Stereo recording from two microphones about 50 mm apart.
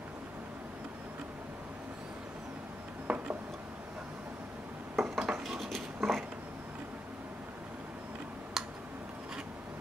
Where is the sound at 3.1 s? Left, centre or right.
Centre.